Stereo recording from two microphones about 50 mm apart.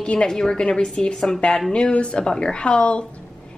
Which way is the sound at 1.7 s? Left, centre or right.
Left.